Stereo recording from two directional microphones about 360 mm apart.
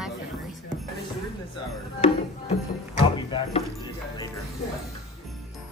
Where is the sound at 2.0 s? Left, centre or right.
Centre.